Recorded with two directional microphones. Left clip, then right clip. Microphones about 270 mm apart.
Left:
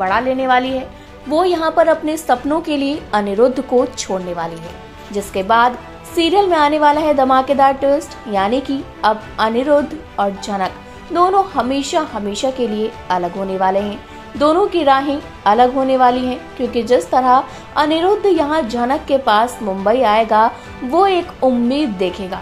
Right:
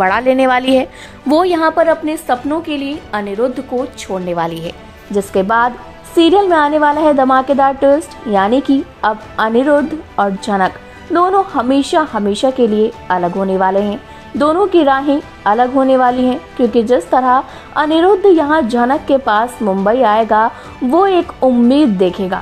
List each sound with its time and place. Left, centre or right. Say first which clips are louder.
0.0 s a woman's voice: right 5 dB; right
1.6 s a woman's voice: right 2 dB; centre
5.1 s a woman's voice: right 2 dB; centre